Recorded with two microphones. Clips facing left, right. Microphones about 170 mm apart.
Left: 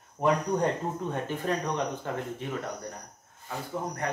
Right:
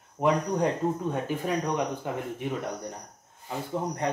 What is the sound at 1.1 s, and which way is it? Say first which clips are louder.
Speech: right 1 dB; 10° right (ahead or behind).